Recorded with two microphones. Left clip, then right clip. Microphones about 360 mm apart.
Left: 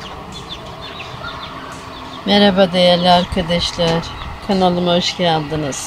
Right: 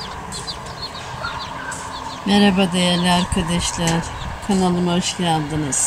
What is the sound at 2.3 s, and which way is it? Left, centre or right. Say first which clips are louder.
Speech: left 5 dB; centre.